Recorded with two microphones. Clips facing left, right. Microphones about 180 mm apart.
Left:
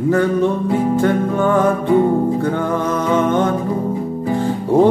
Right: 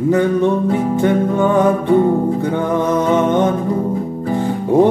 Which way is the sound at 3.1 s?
20° right (ahead or behind).